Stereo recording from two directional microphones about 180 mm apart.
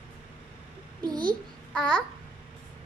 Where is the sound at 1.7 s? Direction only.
5° left (ahead or behind).